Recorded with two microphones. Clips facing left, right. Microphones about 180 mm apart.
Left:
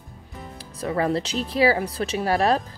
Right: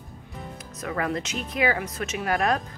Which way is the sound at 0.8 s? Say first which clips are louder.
Left 5 dB; 30° left (ahead or behind).